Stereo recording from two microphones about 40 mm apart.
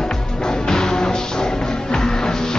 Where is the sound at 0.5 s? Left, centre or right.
Centre.